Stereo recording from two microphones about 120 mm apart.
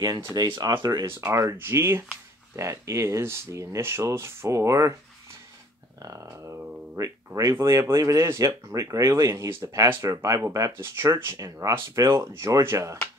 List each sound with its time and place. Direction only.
0.2 s speech: 25° right (ahead or behind)
1.0 s speech: 20° right (ahead or behind)
6.0 s speech: 30° right (ahead or behind)